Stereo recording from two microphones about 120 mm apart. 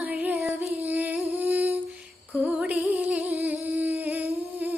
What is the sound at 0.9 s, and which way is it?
Music, 15° right (ahead or behind).